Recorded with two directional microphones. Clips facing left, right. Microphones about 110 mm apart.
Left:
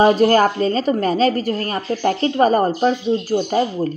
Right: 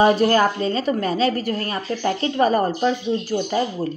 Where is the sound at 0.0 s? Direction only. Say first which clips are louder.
Left 3 dB; 35° left (ahead or behind).